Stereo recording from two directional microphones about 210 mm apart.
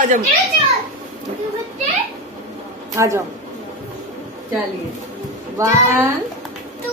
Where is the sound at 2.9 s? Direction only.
15° right (ahead or behind).